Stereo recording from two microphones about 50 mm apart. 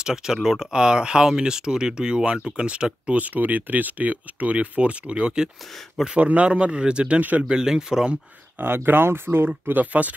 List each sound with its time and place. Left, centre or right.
0.0 s speech: centre
5.7 s speech: centre
6.0 s speech: right
7.2 s speech: right
7.4 s speech: centre
8.6 s speech: right
9.7 s speech: right